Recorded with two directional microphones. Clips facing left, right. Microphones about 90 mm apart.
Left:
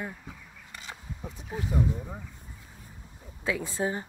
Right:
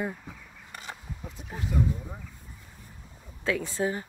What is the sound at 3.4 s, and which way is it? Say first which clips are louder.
Speech: right 2 dB; 15° left (ahead or behind).